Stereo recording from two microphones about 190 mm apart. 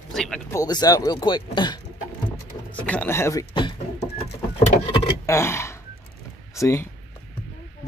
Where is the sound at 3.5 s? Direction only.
25° left (ahead or behind).